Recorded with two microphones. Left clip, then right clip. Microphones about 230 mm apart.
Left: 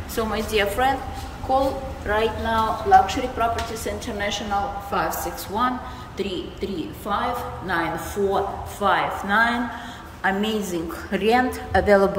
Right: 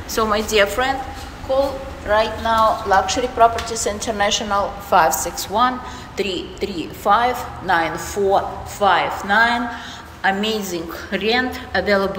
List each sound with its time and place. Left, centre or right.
0.1 s a woman's voice: centre
2.0 s a woman's voice: centre